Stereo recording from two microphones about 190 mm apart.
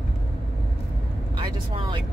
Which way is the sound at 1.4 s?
25° right (ahead or behind).